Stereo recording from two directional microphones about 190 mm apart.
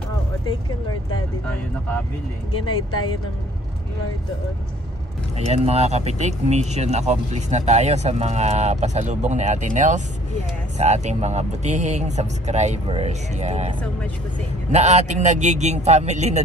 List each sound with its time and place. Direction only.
5.5 s speech: 35° right (ahead or behind)
14.7 s speech: 35° right (ahead or behind)